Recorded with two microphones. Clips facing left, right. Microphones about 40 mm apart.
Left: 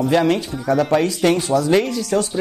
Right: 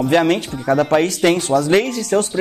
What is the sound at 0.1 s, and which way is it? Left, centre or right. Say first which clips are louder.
Speech: right 3 dB; right.